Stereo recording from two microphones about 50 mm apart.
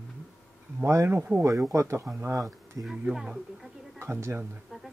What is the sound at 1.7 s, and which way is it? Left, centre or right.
Speech, right.